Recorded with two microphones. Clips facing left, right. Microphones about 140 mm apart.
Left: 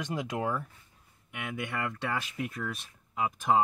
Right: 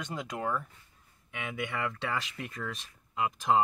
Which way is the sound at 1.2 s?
5° left (ahead or behind).